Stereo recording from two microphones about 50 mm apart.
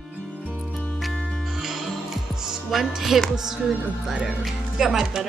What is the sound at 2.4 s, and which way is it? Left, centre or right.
Speech, centre.